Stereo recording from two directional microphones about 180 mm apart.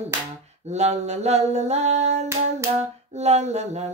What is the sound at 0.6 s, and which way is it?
Mantra, 35° right (ahead or behind).